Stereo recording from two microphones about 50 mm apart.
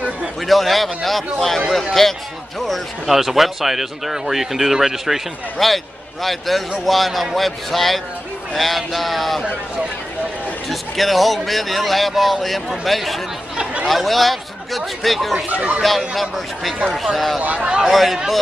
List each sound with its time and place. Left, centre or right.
0.4 s speech: centre
10.7 s speech: centre
15.5 s speech: right
15.8 s speech: centre
17.4 s speech: right
17.8 s speech: centre